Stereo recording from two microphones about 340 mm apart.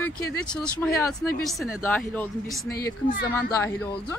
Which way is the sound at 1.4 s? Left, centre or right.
Centre.